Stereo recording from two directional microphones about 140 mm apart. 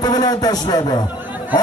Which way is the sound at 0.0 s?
30° left (ahead or behind).